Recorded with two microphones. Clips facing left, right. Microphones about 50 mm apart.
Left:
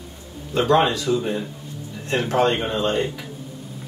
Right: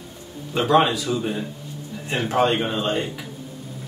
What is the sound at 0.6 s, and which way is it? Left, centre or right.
Speech, centre.